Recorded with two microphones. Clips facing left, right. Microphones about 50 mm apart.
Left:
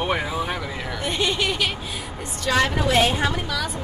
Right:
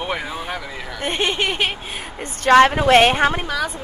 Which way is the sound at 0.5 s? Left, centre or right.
Centre.